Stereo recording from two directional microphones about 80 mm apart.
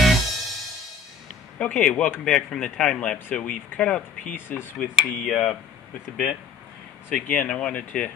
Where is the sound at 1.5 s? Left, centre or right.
Centre.